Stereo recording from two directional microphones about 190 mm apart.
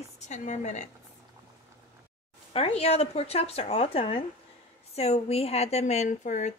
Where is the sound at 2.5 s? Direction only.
35° left (ahead or behind).